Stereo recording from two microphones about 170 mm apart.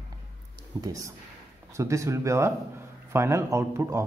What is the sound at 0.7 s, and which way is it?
A woman's voice, 20° right (ahead or behind).